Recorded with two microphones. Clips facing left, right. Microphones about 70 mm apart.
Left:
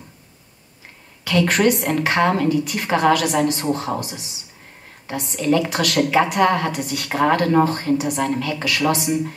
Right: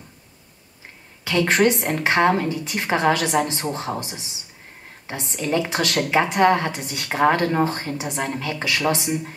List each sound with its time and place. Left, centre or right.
1.2 s a woman's voice: right